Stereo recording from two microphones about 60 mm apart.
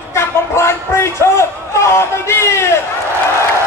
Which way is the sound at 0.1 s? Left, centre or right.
Left.